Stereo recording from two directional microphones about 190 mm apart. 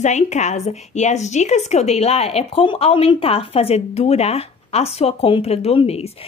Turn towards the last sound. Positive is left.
turn(degrees=35)  # may be behind; listen again after turning